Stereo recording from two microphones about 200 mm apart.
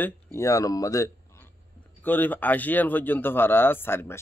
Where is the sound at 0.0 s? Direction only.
15° left (ahead or behind).